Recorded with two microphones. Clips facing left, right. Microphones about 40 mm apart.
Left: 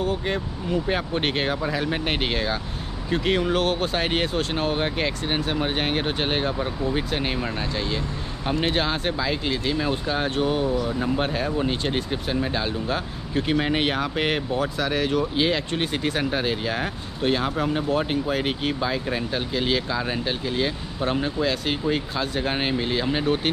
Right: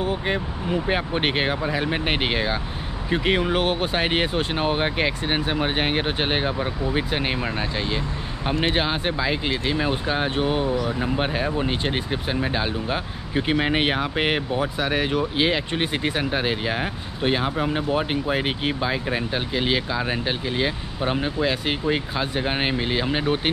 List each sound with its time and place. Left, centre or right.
0.0 s speech: centre